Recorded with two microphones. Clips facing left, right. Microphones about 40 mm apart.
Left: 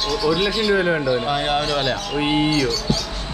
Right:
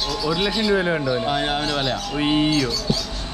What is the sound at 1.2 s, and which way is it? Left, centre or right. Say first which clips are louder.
Speech: left 2 dB; centre.